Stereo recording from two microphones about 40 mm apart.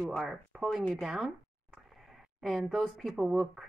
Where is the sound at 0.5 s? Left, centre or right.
Centre.